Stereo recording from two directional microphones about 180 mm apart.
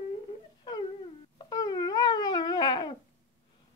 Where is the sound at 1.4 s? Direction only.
20° left (ahead or behind).